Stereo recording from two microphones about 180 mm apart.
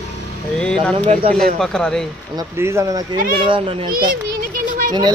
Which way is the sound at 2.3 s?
15° right (ahead or behind).